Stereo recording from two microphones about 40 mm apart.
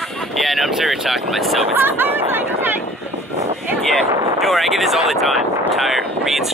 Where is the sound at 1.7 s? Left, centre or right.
Right.